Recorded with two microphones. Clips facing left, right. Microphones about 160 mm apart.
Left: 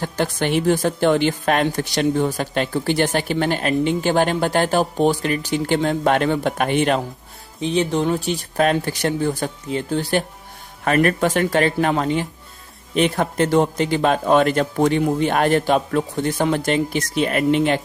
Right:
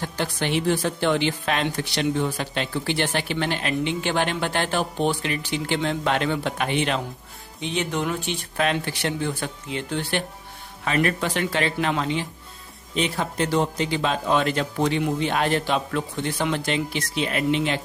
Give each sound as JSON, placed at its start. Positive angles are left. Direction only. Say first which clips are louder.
{"t": 0.0, "sound": "speech", "louder": "left 5 dB", "side_deg": 45}
{"t": 7.6, "sound": "speech", "louder": "left 7 dB", "side_deg": 35}
{"t": 10.8, "sound": "speech", "louder": "left 6 dB", "side_deg": 50}